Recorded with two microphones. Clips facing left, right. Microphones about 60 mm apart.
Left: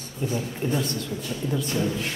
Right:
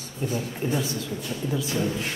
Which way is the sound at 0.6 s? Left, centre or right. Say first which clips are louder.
Left 1 dB; centre.